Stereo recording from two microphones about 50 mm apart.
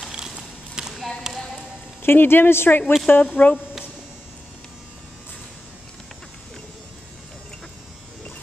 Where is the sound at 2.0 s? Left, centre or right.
Left.